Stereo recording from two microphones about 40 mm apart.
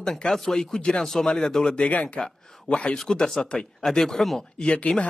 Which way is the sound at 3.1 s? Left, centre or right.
Centre.